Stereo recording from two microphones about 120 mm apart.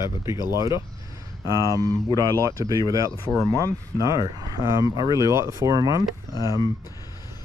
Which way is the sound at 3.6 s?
30° right (ahead or behind).